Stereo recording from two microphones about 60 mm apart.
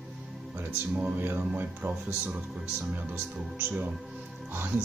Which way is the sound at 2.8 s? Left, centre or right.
Right.